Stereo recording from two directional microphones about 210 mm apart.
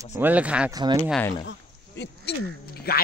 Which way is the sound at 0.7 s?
20° right (ahead or behind).